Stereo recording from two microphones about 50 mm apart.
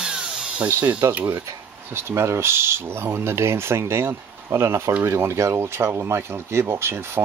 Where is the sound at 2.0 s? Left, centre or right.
Right.